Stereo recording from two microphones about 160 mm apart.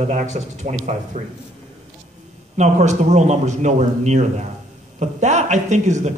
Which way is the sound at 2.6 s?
45° right (ahead or behind).